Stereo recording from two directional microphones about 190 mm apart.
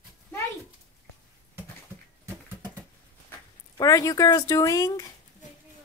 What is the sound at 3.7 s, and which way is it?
Speech, 20° left (ahead or behind).